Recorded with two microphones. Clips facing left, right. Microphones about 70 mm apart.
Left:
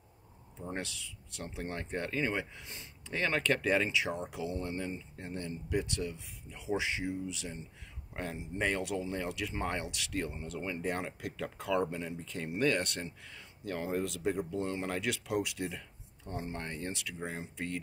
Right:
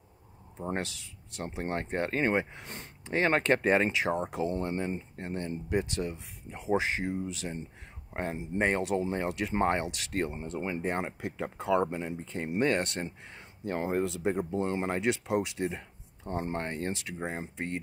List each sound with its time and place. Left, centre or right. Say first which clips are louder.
0.6 s speech: right 6 dB; right
0.8 s speech: even; right
8.1 s speech: right 6 dB; right
10.2 s speech: right 4 dB; right